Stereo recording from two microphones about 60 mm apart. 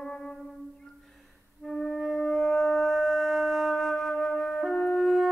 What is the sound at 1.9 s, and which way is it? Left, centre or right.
Wind instrument, centre.